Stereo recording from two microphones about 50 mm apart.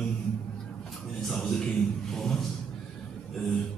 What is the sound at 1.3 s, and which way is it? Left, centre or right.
Music, centre.